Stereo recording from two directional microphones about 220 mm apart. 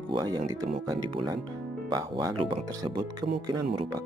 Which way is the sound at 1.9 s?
15° right (ahead or behind).